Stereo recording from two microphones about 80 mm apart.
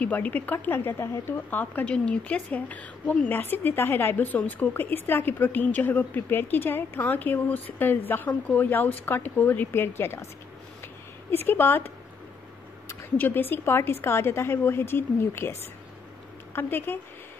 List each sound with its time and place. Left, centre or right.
0.0 s a woman's voice: centre
11.3 s a woman's voice: left